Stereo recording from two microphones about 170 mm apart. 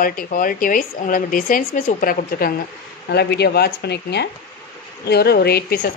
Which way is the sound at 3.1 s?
75° left (ahead or behind).